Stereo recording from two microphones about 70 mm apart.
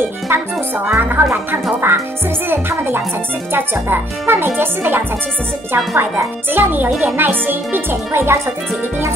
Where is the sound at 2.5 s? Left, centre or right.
Right.